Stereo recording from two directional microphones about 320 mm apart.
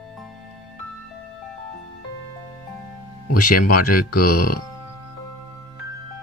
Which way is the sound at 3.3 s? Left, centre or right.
Left.